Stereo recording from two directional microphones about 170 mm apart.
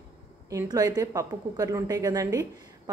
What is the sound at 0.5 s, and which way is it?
A woman's voice, 20° right (ahead or behind).